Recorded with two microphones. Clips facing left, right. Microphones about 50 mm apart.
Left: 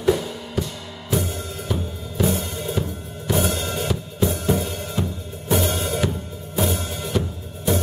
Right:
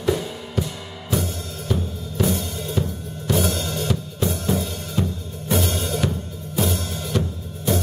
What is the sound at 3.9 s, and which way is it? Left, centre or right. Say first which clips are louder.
Drum kit: left 2 dB; centre.